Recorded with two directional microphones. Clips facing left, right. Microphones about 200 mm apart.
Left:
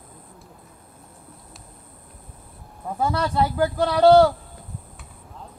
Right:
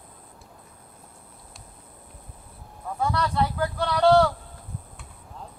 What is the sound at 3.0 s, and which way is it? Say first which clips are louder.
Speech: left 3 dB; 25° left (ahead or behind).